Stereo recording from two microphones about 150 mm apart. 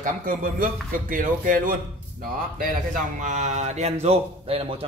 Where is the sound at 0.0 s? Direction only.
65° right (ahead or behind).